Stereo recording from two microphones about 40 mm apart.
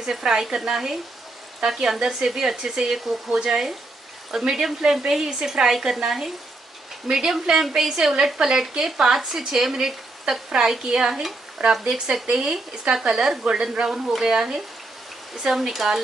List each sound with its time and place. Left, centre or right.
0.1 s a woman's voice: centre
13.8 s speech: centre